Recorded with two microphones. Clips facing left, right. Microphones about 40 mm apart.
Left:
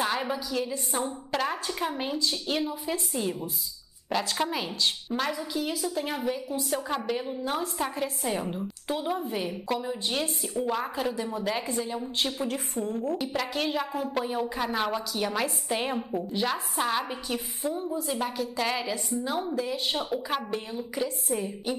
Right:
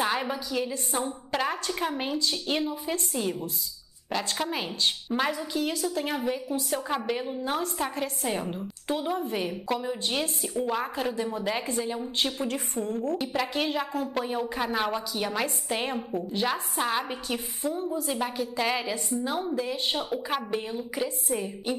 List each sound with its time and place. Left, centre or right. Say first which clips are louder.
0.0 s a woman's voice: right 1 dB; centre
4.5 s a woman's voice: even; centre
5.5 s a woman's voice: right 1 dB; centre
18.0 s a woman's voice: even; centre
19.5 s a woman's voice: even; centre
20.0 s a woman's voice: even; centre